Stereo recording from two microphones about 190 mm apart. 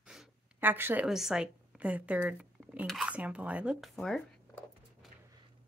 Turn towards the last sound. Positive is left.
turn(degrees=0)  # may be behind; listen again after turning